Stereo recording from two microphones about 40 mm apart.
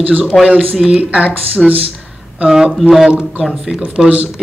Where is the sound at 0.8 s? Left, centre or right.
Centre.